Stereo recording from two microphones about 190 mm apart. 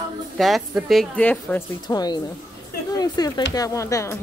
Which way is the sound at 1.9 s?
20° left (ahead or behind).